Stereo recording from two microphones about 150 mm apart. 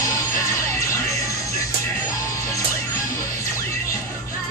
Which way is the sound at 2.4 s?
20° left (ahead or behind).